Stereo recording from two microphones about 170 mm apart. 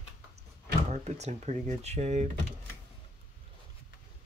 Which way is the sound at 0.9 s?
40° right (ahead or behind).